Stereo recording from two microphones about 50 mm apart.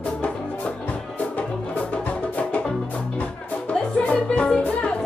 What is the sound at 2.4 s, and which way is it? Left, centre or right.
Music, left.